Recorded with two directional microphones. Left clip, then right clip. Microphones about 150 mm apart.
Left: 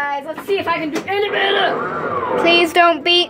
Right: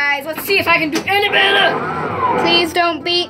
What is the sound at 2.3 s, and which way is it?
Speech, 15° left (ahead or behind).